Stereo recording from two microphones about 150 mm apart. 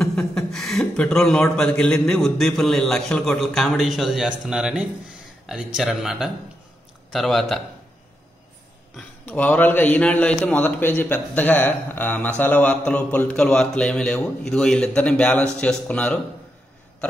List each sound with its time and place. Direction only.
0.3 s a man's voice: centre (ahead or behind)
9.2 s a man's voice: 10° left (ahead or behind)